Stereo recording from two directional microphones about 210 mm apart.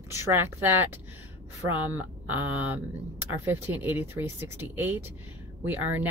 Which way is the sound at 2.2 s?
10° right (ahead or behind).